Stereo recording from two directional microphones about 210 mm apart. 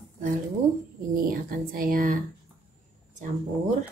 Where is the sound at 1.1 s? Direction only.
40° right (ahead or behind).